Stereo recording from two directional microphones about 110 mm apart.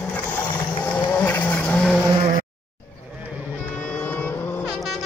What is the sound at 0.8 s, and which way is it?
Vehicle, 15° left (ahead or behind).